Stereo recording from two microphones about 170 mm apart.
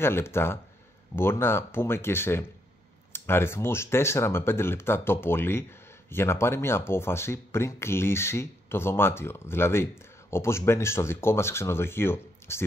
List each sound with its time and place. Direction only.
0.0 s speech: 15° left (ahead or behind)